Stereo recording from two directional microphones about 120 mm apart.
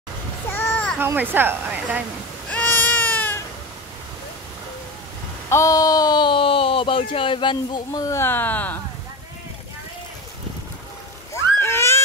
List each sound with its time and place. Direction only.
0.5 s a sound: 15° left (ahead or behind)
0.9 s speech: 15° right (ahead or behind)
2.5 s baby cry: 15° left (ahead or behind)
5.5 s speech: 25° left (ahead or behind)
8.2 s speech: 15° left (ahead or behind)
11.6 s a sound: 20° left (ahead or behind)